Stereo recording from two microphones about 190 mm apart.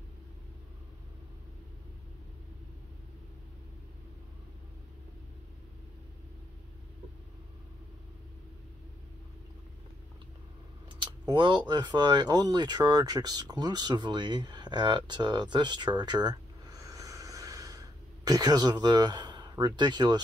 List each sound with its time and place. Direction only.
10.9 s speech: 25° right (ahead or behind)